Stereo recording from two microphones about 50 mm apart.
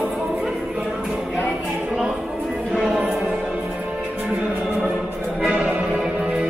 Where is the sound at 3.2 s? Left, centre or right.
Right.